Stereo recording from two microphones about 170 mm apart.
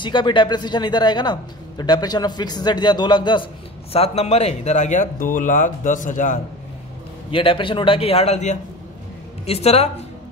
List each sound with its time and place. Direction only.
0.0 s speech: 30° left (ahead or behind); by 6.4 s 50° left (ahead or behind)
7.2 s a man's voice: 30° left (ahead or behind)